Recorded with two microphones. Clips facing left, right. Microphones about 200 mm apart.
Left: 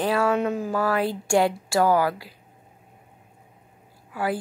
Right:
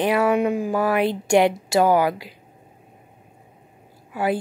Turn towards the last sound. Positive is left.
turn(degrees=-20)  # may be behind; listen again after turning